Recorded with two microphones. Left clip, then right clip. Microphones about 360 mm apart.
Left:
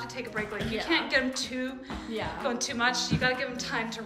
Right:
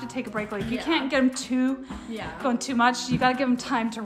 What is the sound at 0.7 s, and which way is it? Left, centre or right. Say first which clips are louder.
A woman's voice: right 2 dB; centre.